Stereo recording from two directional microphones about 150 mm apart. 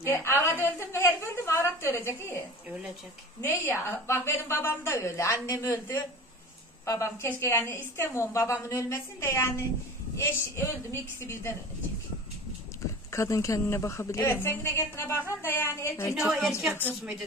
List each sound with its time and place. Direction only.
0.0 s a woman's voice: 15° left (ahead or behind)
13.1 s a woman's voice: 20° left (ahead or behind)
16.2 s a woman's voice: centre (ahead or behind)